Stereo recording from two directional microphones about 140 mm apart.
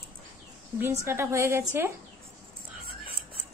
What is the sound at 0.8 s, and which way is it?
A woman's voice, 20° right (ahead or behind).